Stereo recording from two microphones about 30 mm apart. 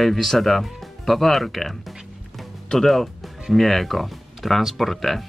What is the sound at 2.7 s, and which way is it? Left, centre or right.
Speech, centre.